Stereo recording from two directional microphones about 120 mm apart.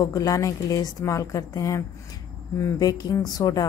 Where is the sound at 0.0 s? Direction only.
30° left (ahead or behind).